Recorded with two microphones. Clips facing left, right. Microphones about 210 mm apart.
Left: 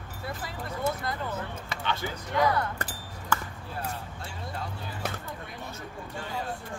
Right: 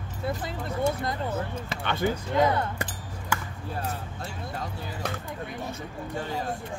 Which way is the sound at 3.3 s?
10° right (ahead or behind).